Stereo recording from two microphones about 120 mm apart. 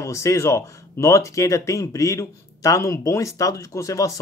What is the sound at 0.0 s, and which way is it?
Speech, 25° left (ahead or behind).